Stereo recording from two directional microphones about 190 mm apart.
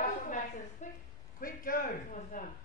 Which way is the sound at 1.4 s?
50° left (ahead or behind).